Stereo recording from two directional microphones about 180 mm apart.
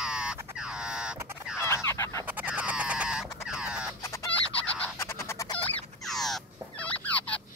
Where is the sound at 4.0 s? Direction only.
15° left (ahead or behind).